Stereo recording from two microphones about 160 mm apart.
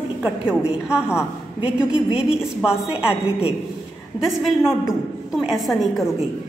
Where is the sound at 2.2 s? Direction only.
5° right (ahead or behind).